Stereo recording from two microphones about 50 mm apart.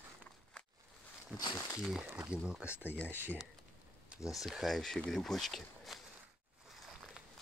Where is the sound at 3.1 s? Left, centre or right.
Right.